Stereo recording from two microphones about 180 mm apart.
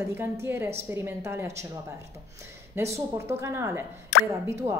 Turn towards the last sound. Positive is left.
turn(degrees=-15)  # may be behind; listen again after turning